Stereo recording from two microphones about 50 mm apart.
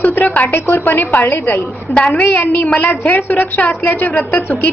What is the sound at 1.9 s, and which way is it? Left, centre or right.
Speech, left.